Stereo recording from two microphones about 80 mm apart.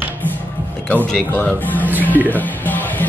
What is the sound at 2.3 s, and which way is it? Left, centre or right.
Music, left.